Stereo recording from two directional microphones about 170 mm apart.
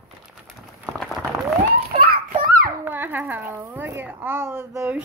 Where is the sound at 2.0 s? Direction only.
60° right (ahead or behind).